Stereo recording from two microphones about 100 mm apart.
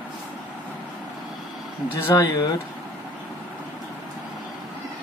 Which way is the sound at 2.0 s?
30° left (ahead or behind).